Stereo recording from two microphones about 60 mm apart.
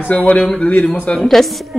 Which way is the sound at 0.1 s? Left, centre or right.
Left.